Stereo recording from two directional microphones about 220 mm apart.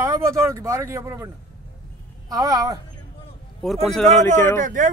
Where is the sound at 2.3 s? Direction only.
15° right (ahead or behind).